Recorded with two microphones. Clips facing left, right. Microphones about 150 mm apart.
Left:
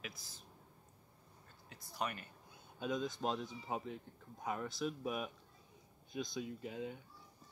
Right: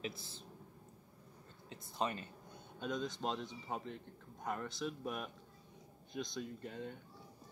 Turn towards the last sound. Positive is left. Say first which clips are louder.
# left 2 dB
turn(degrees=5)  # may be behind; listen again after turning